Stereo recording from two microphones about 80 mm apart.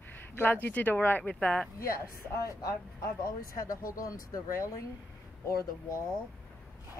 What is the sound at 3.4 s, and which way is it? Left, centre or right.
Speech, left.